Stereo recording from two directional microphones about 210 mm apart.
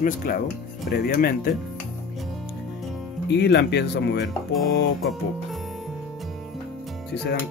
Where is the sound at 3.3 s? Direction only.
55° left (ahead or behind).